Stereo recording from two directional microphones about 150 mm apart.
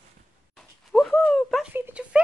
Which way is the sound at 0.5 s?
Centre (ahead or behind).